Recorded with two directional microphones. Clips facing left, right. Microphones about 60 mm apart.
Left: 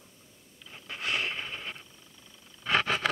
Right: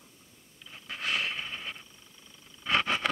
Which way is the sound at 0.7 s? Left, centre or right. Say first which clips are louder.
Even; centre.